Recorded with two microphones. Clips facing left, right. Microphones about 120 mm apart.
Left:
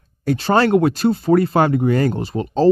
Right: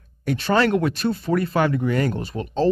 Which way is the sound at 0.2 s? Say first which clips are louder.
Left 4 dB; 35° left (ahead or behind).